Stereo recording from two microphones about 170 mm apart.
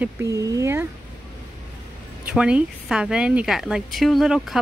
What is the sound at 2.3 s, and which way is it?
Speech, 5° right (ahead or behind).